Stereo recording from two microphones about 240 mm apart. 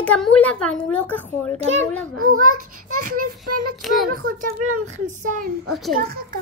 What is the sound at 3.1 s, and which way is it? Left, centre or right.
Speech, right.